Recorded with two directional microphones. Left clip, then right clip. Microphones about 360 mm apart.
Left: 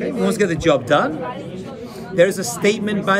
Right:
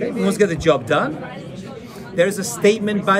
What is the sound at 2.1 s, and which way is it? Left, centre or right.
A man's voice, centre.